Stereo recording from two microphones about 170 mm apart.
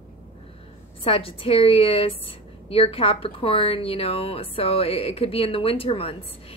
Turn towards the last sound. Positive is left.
turn(degrees=35)  # may be behind; listen again after turning